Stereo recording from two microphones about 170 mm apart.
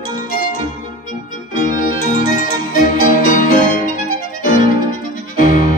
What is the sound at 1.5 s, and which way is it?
Music, 50° left (ahead or behind).